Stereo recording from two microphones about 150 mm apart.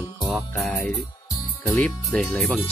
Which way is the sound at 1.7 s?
5° left (ahead or behind).